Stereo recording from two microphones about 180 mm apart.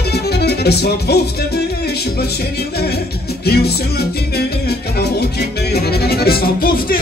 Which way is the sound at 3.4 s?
65° left (ahead or behind).